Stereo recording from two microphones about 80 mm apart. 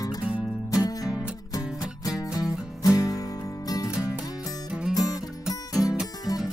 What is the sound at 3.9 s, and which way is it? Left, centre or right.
Music, centre.